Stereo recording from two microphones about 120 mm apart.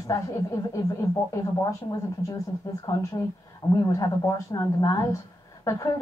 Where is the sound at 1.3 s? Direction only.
25° left (ahead or behind).